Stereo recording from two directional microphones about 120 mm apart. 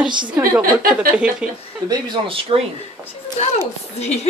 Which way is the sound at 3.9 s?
65° left (ahead or behind).